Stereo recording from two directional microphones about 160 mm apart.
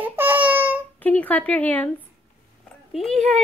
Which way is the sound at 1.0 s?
10° left (ahead or behind).